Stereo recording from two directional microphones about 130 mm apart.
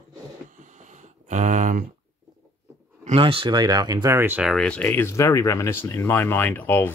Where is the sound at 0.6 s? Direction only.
70° right (ahead or behind).